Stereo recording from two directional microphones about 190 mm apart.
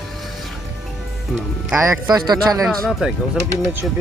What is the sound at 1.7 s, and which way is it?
Speech, 15° right (ahead or behind).